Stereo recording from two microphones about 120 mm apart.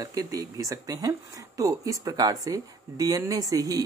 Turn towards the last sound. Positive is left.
turn(degrees=-30)  # may be behind; listen again after turning